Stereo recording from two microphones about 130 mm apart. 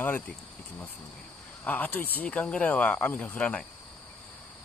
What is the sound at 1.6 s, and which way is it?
Speech, 15° left (ahead or behind).